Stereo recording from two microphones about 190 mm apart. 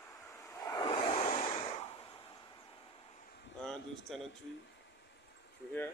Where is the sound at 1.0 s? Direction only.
40° left (ahead or behind).